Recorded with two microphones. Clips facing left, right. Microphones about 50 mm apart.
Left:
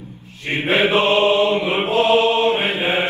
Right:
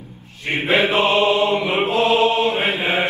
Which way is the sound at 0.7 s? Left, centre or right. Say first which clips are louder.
Left 1 dB; left.